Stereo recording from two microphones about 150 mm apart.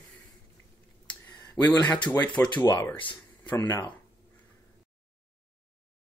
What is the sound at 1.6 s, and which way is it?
Speech, 15° left (ahead or behind).